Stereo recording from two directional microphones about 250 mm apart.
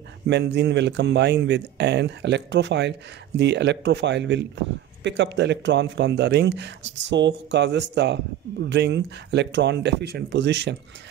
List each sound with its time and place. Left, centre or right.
0.3 s a man's voice: right